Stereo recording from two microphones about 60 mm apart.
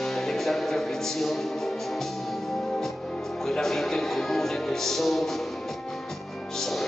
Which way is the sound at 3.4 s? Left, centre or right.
Centre.